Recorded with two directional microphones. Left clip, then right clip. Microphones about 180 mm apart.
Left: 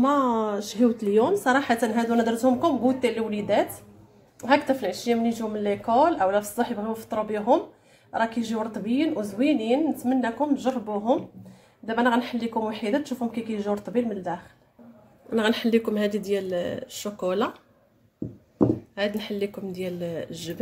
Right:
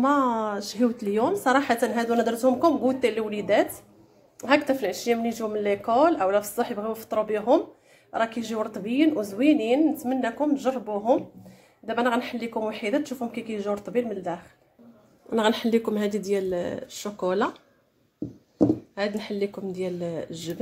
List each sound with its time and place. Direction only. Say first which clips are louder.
0.0 s a woman's voice: even; 15° right (ahead or behind)
15.2 s speech: right 1 dB; 30° right (ahead or behind)
18.9 s speech: even; 25° right (ahead or behind)